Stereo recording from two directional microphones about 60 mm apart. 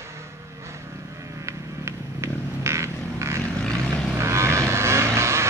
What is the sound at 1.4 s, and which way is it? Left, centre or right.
Vehicle, right.